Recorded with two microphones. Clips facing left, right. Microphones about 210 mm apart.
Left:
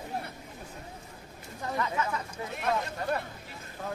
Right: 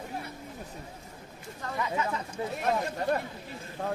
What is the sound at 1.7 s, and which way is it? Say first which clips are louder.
Speech: right 1 dB; 15° right (ahead or behind).